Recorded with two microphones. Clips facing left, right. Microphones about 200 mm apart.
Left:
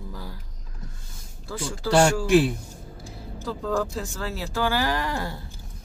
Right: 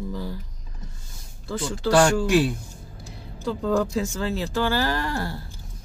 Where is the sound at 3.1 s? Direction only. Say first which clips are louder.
Right 4 dB; centre (ahead or behind).